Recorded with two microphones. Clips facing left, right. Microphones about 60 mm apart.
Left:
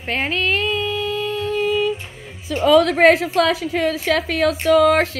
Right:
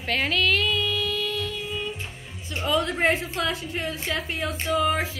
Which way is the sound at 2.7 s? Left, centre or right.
Left.